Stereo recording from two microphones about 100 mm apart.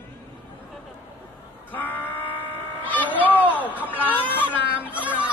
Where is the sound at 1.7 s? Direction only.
20° left (ahead or behind).